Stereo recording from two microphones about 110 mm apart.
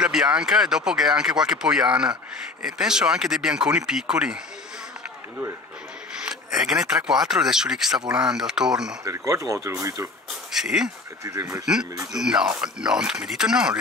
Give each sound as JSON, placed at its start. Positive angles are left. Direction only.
{"t": 0.0, "sound": "speech", "side_deg": -5}
{"t": 6.2, "sound": "a sound", "side_deg": -5}
{"t": 7.1, "sound": "speech", "side_deg": -5}
{"t": 9.0, "sound": "speech", "side_deg": -30}
{"t": 10.5, "sound": "speech", "side_deg": -5}
{"t": 11.2, "sound": "speech", "side_deg": -30}
{"t": 11.6, "sound": "speech", "side_deg": -5}